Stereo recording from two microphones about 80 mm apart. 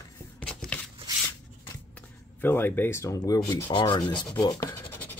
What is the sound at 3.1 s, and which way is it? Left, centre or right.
Speech, left.